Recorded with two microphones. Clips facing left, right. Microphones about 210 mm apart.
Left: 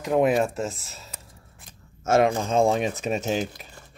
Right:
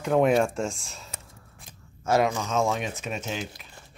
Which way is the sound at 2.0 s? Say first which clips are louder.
Left 3 dB; 25° left (ahead or behind).